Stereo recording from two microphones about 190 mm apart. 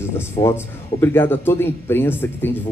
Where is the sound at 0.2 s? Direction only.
15° left (ahead or behind).